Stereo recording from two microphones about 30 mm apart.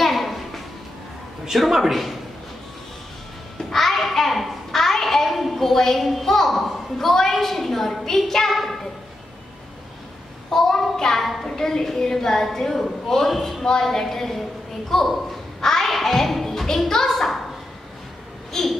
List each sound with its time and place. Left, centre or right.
0.0 s a sound: centre
1.7 s speech: centre
3.7 s a sound: centre
7.3 s a woman's voice: centre
10.5 s child singing: centre
11.1 s speech: centre
11.4 s a woman's voice: centre
18.5 s a woman's voice: centre